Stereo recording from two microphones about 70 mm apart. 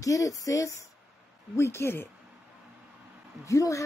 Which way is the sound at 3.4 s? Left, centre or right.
Left.